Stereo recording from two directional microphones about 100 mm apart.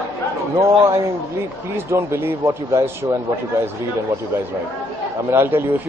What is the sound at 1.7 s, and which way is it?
Speech, 25° right (ahead or behind).